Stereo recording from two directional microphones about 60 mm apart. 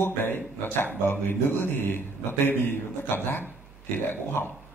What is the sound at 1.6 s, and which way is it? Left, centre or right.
Speech, left.